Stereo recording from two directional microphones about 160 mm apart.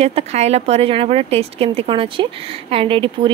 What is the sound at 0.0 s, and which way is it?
Speech, 40° right (ahead or behind).